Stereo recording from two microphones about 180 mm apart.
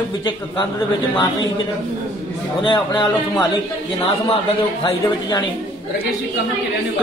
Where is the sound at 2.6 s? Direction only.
25° left (ahead or behind).